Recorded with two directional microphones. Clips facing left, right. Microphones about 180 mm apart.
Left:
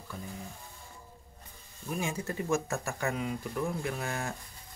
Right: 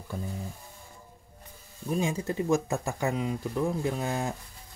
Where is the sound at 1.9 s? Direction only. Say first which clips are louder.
Right 5 dB; 20° right (ahead or behind).